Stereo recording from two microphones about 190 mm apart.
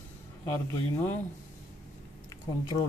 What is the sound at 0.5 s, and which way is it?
Speech, 15° left (ahead or behind).